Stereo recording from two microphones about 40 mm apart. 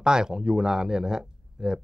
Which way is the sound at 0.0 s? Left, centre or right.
Centre.